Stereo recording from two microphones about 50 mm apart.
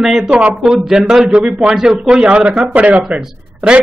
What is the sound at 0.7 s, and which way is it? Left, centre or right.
Speech, centre.